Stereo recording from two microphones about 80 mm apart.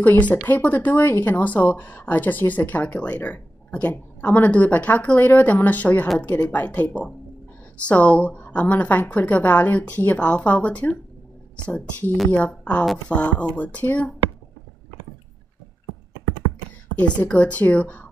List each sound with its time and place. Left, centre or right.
0.0 s a woman's voice: centre
17.0 s a woman's voice: centre